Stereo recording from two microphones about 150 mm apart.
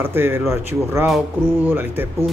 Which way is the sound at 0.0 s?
15° right (ahead or behind).